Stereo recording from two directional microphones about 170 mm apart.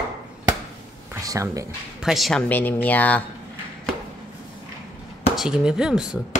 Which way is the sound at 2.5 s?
10° left (ahead or behind).